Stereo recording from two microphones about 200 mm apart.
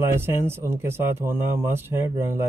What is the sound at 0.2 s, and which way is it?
Speech, 10° right (ahead or behind).